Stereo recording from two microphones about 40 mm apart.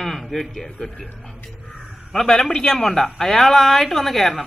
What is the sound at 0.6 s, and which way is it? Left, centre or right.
Speech, centre.